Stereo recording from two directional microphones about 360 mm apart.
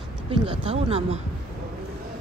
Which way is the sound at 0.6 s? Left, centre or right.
Centre.